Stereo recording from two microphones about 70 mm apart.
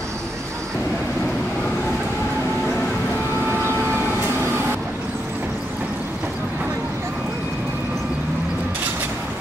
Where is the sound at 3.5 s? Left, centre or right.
Right.